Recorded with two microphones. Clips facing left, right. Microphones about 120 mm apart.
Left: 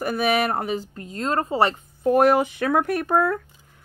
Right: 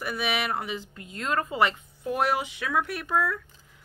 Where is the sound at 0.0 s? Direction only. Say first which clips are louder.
Left 8 dB; 45° left (ahead or behind).